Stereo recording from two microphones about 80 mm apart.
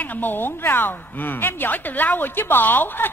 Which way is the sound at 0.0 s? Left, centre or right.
Left.